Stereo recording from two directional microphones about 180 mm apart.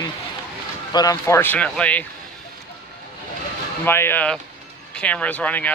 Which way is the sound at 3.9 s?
10° left (ahead or behind).